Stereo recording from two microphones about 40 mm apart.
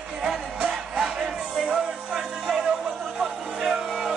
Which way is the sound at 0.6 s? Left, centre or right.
Centre.